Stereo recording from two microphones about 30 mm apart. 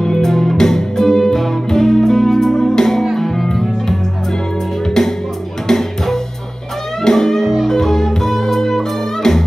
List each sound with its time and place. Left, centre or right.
0.6 s music: centre
4.8 s music: centre